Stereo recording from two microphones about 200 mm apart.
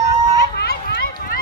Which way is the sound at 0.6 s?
55° left (ahead or behind).